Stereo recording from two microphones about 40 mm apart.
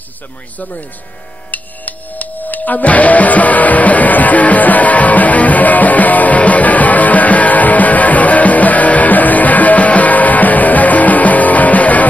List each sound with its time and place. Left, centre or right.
1.5 s music: left